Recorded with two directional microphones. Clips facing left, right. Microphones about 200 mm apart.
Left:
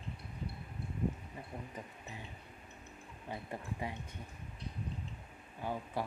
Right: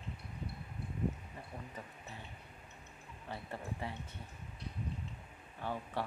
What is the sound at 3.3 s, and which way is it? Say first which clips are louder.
Speech: left 1 dB; 15° left (ahead or behind).